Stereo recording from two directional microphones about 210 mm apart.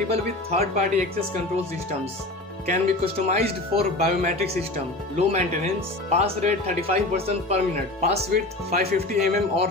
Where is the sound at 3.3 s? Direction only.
35° right (ahead or behind).